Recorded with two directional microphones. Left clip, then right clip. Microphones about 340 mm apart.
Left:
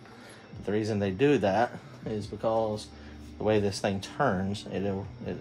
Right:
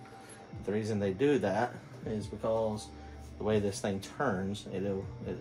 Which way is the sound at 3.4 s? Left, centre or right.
Left.